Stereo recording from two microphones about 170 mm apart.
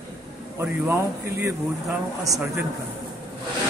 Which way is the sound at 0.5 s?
15° right (ahead or behind).